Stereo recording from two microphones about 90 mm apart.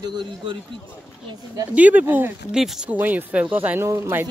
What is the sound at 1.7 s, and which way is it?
Speech, 15° right (ahead or behind).